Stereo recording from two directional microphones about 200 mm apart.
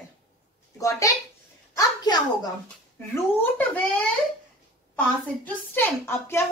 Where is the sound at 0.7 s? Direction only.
15° left (ahead or behind).